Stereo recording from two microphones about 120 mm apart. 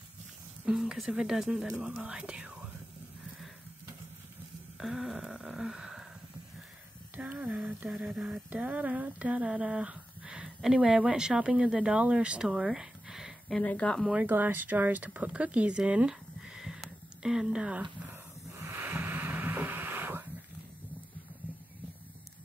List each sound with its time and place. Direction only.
0.7 s speech: 5° right (ahead or behind)
4.7 s a sound: centre (ahead or behind)
7.2 s speech: 10° right (ahead or behind)
13.6 s speech: 10° left (ahead or behind)
14.1 s speech: 15° right (ahead or behind)
18.6 s a sound: 20° right (ahead or behind)